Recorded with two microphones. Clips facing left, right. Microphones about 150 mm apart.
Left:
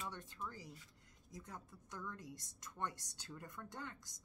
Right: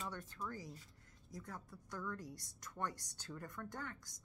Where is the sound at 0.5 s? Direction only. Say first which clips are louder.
Right 4 dB; 45° right (ahead or behind).